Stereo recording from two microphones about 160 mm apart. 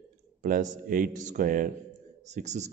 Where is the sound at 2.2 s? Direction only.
45° right (ahead or behind).